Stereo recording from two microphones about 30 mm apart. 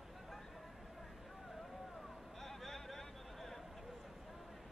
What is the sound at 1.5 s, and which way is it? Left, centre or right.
Vehicle, centre.